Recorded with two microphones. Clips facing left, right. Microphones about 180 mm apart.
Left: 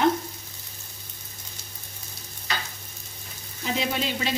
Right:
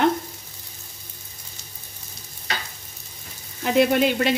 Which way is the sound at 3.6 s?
60° right (ahead or behind).